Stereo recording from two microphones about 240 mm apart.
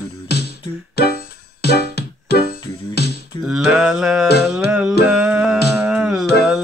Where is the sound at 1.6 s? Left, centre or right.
Left.